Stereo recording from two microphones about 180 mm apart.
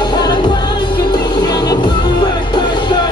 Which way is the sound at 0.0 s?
25° left (ahead or behind).